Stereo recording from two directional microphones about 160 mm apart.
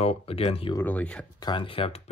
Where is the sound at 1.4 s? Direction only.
30° left (ahead or behind).